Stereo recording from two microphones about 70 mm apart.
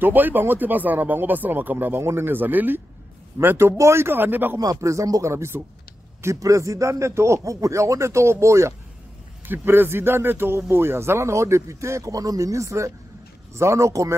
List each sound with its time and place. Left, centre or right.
0.0 s speech: right
4.6 s speech: right
5.3 s a man's voice: right
9.5 s a man's voice: right